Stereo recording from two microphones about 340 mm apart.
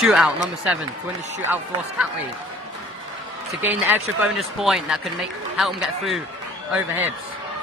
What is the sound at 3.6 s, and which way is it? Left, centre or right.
Speech, centre.